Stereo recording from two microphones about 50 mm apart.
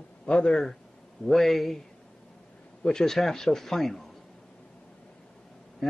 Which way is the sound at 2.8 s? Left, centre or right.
Centre.